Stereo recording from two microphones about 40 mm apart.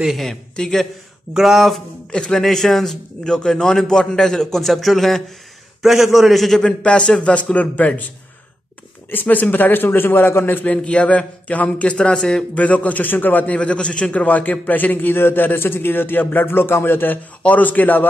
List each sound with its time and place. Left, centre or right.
0.3 s a man's voice: centre
1.3 s speech: centre
2.0 s a man's voice: left
2.4 s a man's voice: centre
3.3 s a man's voice: left; by 6.6 s centre
6.6 s speech: left
7.5 s a man's voice: left
9.1 s a man's voice: left
10.8 s a man's voice: left
12.0 s speech: left
12.5 s a man's voice: left
13.6 s a man's voice: left
15.1 s a man's voice: left
17.4 s a man's voice: left